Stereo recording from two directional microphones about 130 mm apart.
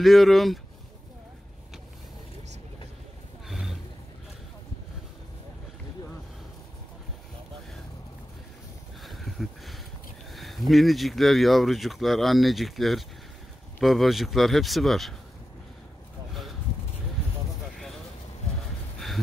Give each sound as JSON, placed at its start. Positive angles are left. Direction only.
{"t": 0.0, "sound": "speech", "side_deg": 0}
{"t": 3.4, "sound": "vehicle", "side_deg": 0}
{"t": 9.0, "sound": "a sound", "side_deg": 0}
{"t": 10.3, "sound": "speech", "side_deg": 0}